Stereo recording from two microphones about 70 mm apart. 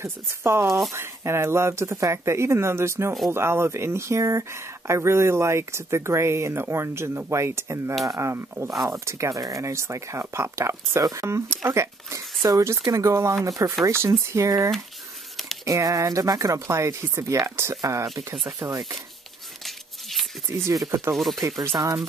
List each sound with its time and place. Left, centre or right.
0.0 s speech: right
0.7 s speech: centre
0.9 s speech: right
15.6 s speech: right
18.1 s speech: centre
19.6 s a sound: centre
20.7 s speech: right
21.1 s speech: centre
21.7 s speech: right